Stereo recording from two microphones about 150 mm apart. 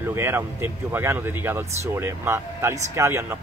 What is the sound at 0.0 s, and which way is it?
Speech, 15° right (ahead or behind).